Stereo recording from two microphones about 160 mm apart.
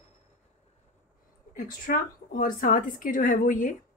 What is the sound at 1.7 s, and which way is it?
Speech, 60° left (ahead or behind).